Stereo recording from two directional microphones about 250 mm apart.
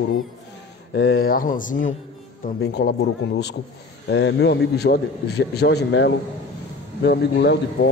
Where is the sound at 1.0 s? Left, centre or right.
Left.